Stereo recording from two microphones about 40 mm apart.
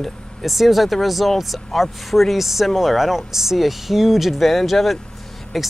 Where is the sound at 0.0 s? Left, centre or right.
Centre.